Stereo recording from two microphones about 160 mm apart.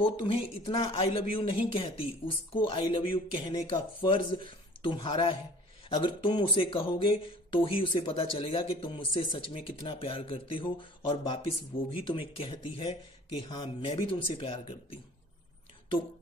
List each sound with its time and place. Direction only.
0.0 s speech: 35° left (ahead or behind)